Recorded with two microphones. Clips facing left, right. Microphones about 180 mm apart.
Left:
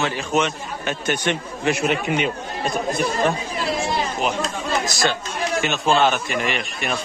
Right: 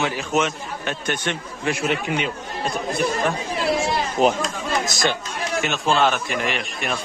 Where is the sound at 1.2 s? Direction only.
20° left (ahead or behind).